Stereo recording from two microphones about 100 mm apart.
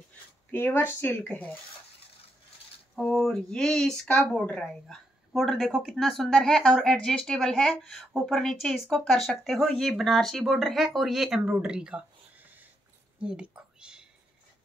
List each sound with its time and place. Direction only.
0.5 s speech: 20° left (ahead or behind)
3.0 s speech: 10° left (ahead or behind); by 12.5 s 10° right (ahead or behind)
13.2 s whispering: 10° right (ahead or behind)